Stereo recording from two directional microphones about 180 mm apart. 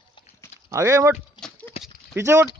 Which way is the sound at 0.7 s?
15° right (ahead or behind).